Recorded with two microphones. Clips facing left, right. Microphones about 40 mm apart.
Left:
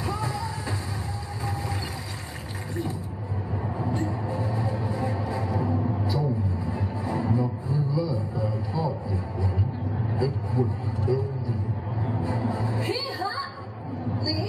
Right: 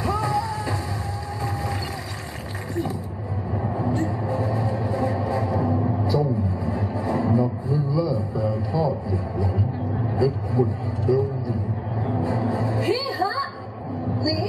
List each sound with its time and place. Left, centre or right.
0.0 s music: centre
3.6 s a sound: centre
3.9 s music: centre
6.0 s a sound: centre
10.1 s vehicle: centre
12.2 s music: centre